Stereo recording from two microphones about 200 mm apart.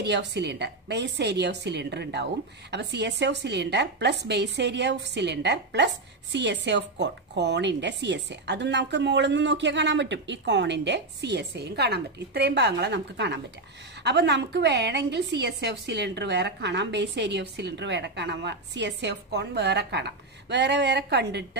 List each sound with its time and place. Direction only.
0.0 s a woman's voice: 60° right (ahead or behind)